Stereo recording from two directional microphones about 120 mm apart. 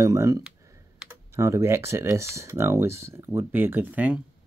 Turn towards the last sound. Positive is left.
turn(degrees=-15)  # may be behind; listen again after turning